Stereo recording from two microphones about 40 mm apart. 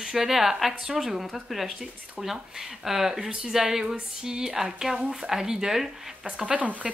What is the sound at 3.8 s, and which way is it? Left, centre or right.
Speech, centre.